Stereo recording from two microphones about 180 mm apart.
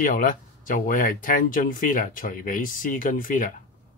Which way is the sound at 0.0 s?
50° left (ahead or behind).